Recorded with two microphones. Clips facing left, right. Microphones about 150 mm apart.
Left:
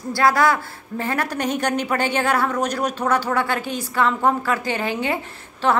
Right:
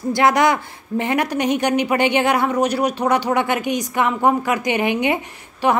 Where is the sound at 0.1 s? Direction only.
20° right (ahead or behind).